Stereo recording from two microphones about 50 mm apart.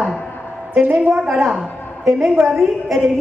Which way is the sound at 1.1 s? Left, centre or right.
Centre.